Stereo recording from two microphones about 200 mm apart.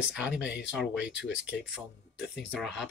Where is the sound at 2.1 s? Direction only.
60° left (ahead or behind).